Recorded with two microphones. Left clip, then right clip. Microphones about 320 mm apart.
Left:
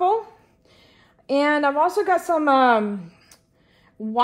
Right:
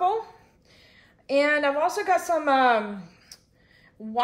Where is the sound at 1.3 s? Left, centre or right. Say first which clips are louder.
Left 2 dB; centre.